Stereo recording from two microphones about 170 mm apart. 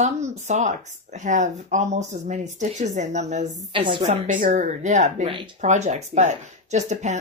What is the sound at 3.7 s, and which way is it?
Speech, 30° right (ahead or behind).